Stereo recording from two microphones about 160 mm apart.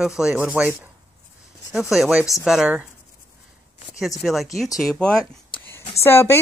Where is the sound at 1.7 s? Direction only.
5° right (ahead or behind).